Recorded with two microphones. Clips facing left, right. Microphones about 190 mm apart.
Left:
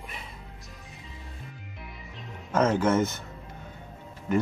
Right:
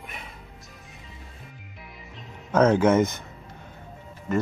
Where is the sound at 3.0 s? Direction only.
15° right (ahead or behind).